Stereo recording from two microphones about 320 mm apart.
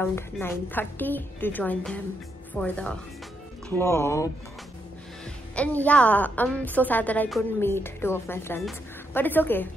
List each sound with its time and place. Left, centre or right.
0.0 s a woman's voice: centre